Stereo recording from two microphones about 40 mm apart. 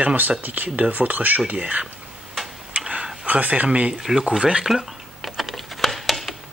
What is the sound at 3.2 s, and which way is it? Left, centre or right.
Speech, right.